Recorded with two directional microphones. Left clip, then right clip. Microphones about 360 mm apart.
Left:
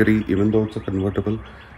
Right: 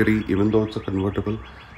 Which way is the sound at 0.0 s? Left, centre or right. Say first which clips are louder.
Left 2 dB; centre.